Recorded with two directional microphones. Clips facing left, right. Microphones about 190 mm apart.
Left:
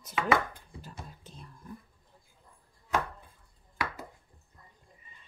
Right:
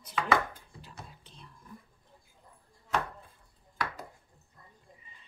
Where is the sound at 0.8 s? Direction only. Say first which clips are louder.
Left 4 dB; 45° left (ahead or behind).